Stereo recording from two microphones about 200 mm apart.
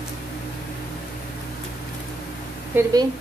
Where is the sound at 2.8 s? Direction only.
20° right (ahead or behind).